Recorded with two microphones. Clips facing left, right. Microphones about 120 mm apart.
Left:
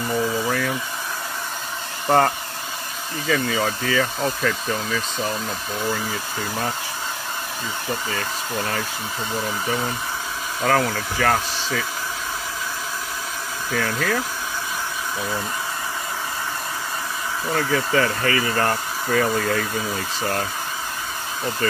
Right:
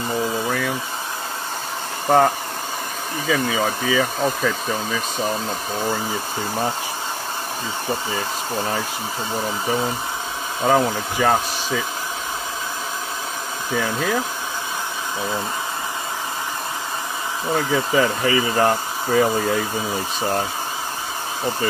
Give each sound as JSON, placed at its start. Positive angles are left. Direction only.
{"t": 0.5, "sound": "a sound", "side_deg": 0}
{"t": 2.0, "sound": "speech", "side_deg": -5}
{"t": 8.1, "sound": "speech", "side_deg": -20}
{"t": 13.7, "sound": "speech", "side_deg": -15}
{"t": 17.5, "sound": "speech", "side_deg": -15}